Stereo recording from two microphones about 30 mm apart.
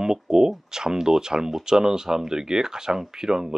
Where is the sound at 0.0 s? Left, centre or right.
Centre.